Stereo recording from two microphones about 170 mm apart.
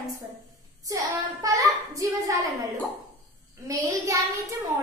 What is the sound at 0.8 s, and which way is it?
A child's voice, 20° right (ahead or behind).